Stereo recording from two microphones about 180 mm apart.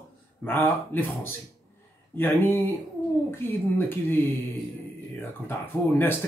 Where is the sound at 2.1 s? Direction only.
10° left (ahead or behind).